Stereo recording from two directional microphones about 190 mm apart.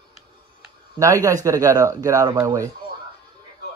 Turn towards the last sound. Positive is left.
turn(degrees=-15)  # may be behind; listen again after turning